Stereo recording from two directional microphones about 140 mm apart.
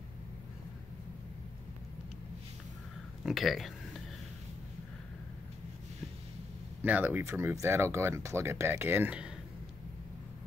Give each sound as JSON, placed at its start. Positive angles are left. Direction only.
{"t": 3.3, "sound": "speech", "side_deg": 0}
{"t": 6.8, "sound": "speech", "side_deg": -10}